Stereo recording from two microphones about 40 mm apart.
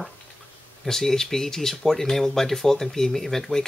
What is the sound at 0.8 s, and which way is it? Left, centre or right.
Speech, centre.